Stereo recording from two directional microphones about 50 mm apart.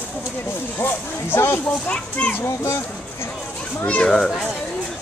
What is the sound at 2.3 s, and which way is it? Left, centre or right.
Speech, left.